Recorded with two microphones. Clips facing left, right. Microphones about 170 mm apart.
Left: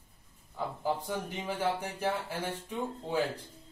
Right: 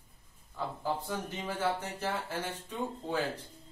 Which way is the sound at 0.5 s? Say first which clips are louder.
Left 2 dB; 15° left (ahead or behind).